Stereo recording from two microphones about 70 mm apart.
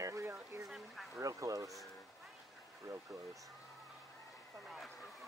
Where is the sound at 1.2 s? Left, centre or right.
Right.